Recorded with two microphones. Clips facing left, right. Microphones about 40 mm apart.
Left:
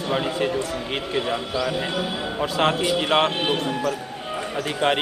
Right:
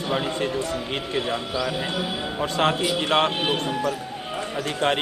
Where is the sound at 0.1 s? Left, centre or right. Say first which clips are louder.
Left 2 dB; centre.